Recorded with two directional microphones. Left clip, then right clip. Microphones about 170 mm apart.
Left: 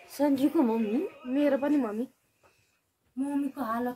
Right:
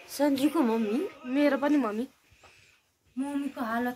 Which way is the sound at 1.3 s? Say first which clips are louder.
Right 1 dB; 5° right (ahead or behind).